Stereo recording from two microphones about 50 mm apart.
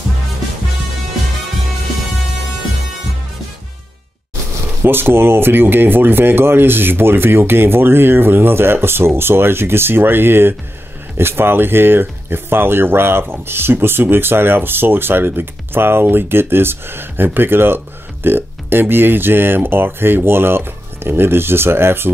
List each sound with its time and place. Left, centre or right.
4.8 s speech: right